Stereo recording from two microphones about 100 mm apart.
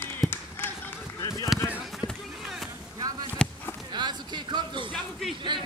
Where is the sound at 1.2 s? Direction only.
40° left (ahead or behind).